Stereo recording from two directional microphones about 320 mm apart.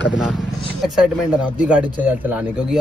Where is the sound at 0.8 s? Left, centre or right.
Centre.